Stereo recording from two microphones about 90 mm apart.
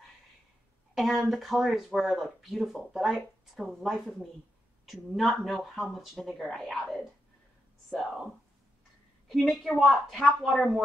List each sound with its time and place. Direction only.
0.9 s speech: centre (ahead or behind)
9.3 s speech: centre (ahead or behind)